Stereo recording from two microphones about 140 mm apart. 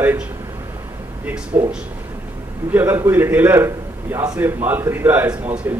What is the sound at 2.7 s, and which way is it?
A man's voice, 15° right (ahead or behind).